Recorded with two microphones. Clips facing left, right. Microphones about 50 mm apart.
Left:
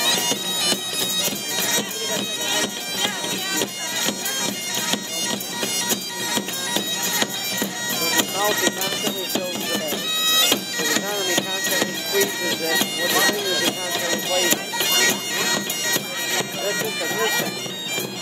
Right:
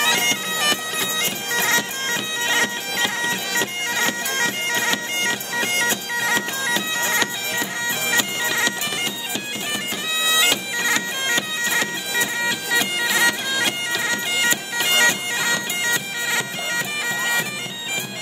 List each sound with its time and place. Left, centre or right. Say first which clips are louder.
0.0 s bagpipes: right 3 dB; right; by 17.5 s centre